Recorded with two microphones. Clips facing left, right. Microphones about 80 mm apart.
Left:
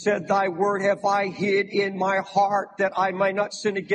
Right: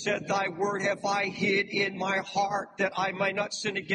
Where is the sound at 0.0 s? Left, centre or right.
Left.